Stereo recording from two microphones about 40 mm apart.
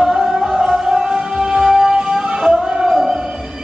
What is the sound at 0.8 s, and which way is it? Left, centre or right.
Music, centre.